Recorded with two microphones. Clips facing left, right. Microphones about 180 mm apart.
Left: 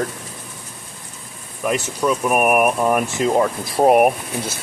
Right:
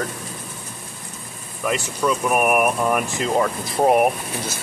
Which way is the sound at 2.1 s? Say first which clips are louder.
Left 2 dB; 5° left (ahead or behind).